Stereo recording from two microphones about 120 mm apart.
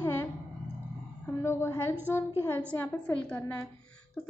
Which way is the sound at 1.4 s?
20° left (ahead or behind).